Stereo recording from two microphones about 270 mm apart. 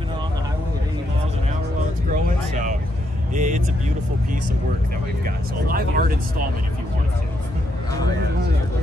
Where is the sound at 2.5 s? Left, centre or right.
Right.